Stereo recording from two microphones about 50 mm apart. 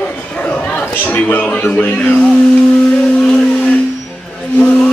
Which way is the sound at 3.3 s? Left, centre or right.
Left.